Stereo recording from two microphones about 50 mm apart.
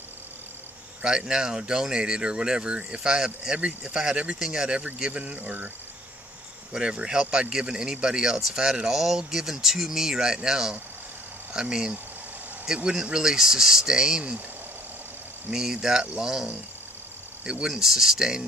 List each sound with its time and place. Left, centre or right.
1.0 s speech: centre
6.7 s speech: centre
15.5 s speech: centre